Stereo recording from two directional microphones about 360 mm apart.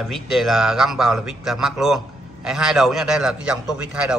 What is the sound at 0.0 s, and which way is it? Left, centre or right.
A man's voice, centre.